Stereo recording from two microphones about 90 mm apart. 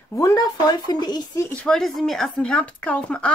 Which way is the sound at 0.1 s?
35° left (ahead or behind).